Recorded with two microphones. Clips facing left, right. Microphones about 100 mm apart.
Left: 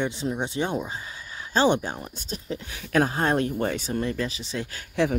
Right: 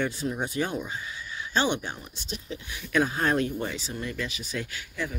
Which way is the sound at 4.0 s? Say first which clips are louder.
Left 5 dB; 35° left (ahead or behind).